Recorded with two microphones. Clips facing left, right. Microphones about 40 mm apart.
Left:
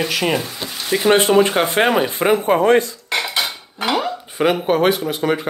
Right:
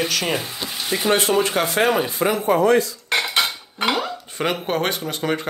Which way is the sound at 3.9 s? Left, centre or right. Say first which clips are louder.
Left 7 dB; centre.